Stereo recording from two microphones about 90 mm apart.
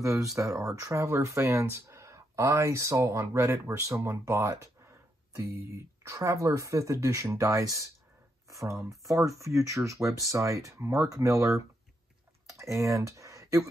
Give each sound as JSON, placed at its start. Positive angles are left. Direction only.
{"t": 0.2, "sound": "speech", "side_deg": -35}